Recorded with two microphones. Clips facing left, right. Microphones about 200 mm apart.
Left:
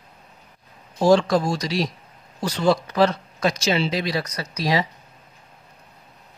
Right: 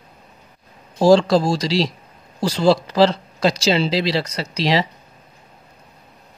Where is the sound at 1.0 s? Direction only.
30° right (ahead or behind).